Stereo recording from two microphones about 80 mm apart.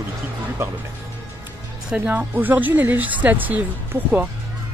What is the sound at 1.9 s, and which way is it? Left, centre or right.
Speech, right.